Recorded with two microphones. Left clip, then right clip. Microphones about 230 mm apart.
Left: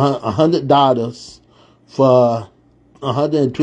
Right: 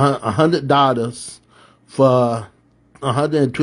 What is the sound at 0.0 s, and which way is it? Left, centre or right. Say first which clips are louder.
A man's voice: left 1 dB; centre.